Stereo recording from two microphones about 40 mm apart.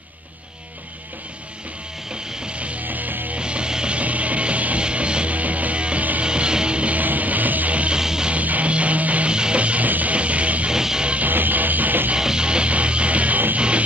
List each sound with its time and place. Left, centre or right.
2.4 s music: right
2.8 s music: right
3.3 s music: right
4.0 s music: right
7.0 s music: right
7.9 s music: centre
8.3 s music: right
9.3 s music: right
9.8 s music: right
10.1 s music: right
10.7 s music: centre
11.2 s music: right
12.2 s music: centre